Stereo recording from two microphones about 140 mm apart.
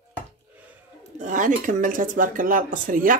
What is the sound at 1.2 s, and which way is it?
Speech, 60° right (ahead or behind).